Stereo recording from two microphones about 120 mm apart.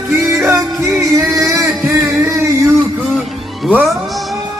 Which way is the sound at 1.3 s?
25° right (ahead or behind).